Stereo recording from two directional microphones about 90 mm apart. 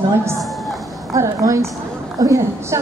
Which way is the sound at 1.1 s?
35° right (ahead or behind).